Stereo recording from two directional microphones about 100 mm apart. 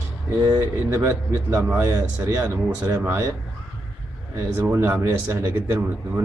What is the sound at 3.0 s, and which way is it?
Speech, 25° right (ahead or behind).